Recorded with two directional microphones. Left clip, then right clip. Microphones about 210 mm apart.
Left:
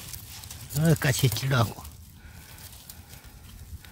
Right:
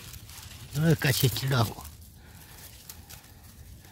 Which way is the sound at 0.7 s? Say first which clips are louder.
Left 1 dB; centre (ahead or behind).